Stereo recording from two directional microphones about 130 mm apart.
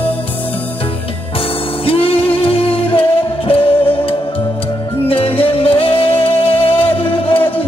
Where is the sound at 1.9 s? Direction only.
45° left (ahead or behind).